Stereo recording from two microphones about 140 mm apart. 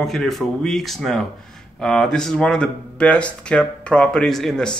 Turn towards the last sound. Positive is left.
turn(degrees=5)  # may be behind; listen again after turning